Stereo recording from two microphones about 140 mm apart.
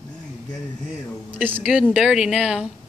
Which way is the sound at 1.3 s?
15° right (ahead or behind).